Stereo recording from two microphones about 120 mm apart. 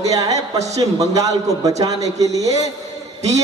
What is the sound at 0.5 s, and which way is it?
Speech, 70° right (ahead or behind).